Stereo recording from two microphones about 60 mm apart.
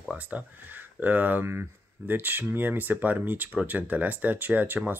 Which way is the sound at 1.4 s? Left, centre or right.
Right.